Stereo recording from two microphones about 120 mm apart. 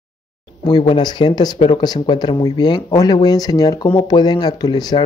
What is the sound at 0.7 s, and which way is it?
Speech, 40° left (ahead or behind).